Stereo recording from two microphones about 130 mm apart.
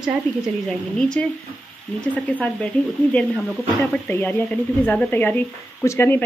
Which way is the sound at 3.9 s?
10° left (ahead or behind).